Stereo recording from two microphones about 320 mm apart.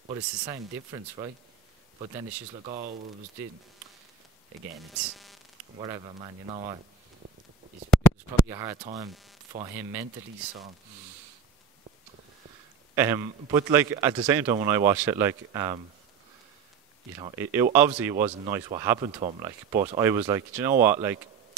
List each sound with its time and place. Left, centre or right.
0.1 s speech: centre
4.7 s speech: centre
5.8 s speech: centre
8.5 s speech: centre
12.9 s speech: centre
17.2 s speech: centre